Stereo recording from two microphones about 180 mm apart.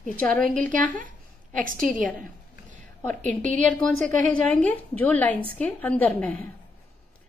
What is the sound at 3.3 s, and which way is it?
A woman's voice, 10° left (ahead or behind).